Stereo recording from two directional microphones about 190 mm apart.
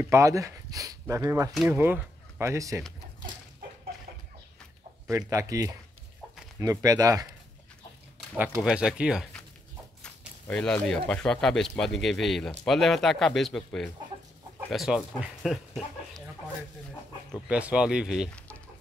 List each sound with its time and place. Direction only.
0.0 s speech: 15° right (ahead or behind)
5.0 s speech: 15° right (ahead or behind)
8.4 s speech: 5° right (ahead or behind)
17.3 s speech: 5° right (ahead or behind)